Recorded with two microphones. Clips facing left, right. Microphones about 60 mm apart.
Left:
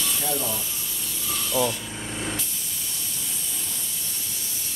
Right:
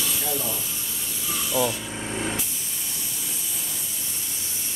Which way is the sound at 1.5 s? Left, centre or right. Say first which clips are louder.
Even; centre.